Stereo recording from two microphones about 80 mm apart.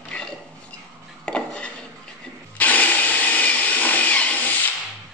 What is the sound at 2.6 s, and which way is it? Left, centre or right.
Tools, left.